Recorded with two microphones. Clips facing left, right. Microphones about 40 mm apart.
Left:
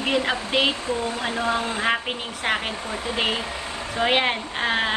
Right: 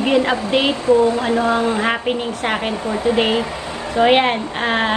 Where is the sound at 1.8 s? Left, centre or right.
Centre.